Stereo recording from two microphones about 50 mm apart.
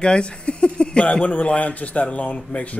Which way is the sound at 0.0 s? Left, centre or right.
Centre.